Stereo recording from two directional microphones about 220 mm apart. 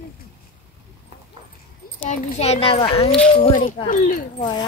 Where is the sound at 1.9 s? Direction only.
30° left (ahead or behind).